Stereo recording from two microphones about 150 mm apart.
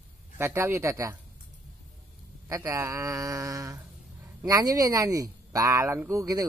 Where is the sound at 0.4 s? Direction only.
15° right (ahead or behind).